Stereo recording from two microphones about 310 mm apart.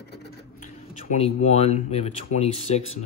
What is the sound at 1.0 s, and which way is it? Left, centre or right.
Speech, left.